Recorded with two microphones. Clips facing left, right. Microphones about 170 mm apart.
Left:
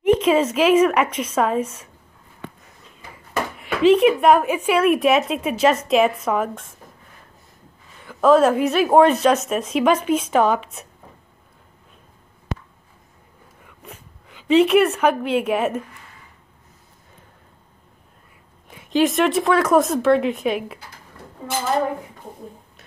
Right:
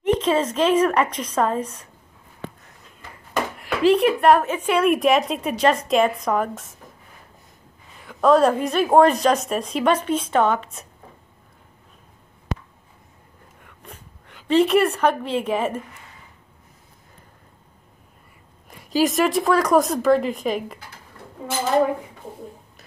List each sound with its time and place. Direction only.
0.0 s a woman's voice: 10° left (ahead or behind)
3.5 s a woman's voice: centre (ahead or behind)
8.0 s a woman's voice: centre (ahead or behind)
13.6 s a sound: centre (ahead or behind)
14.2 s a woman's voice: 5° left (ahead or behind)
18.7 s a woman's voice: centre (ahead or behind)